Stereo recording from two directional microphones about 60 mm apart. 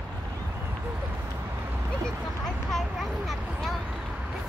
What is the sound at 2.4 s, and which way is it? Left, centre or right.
Vehicle, centre.